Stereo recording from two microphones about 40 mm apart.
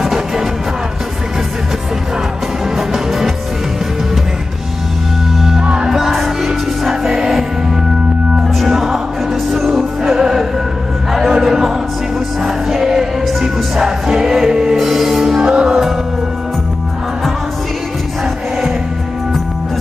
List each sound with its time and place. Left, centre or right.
2.9 s music: centre
5.6 s music: right
5.9 s music: centre
10.1 s music: centre
15.2 s music: centre